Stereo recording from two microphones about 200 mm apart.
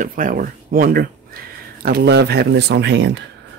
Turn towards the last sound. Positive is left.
turn(degrees=-60)  # may be behind; listen again after turning